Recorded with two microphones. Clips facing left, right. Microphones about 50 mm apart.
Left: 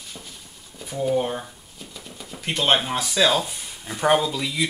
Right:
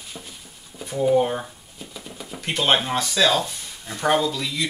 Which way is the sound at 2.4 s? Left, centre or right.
Centre.